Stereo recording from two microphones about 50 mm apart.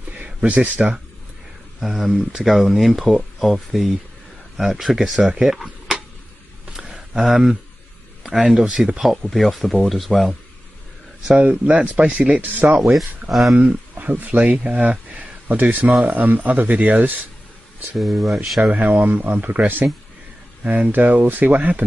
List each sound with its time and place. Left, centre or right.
0.5 s speech: right
1.8 s speech: centre
5.4 s a sound: centre
8.6 s speech: centre
9.2 s speech: centre
11.3 s speech: right
12.9 s speech: centre
13.6 s speech: right
17.9 s speech: centre
18.7 s speech: right
20.9 s speech: right